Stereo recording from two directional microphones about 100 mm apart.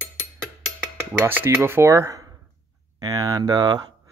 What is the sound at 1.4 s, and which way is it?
Speech, 25° right (ahead or behind).